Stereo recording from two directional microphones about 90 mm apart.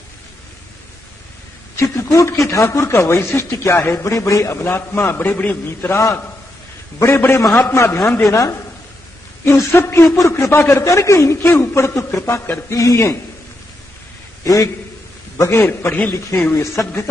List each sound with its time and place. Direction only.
1.8 s a man's voice: 35° left (ahead or behind)
14.4 s a man's voice: 40° left (ahead or behind)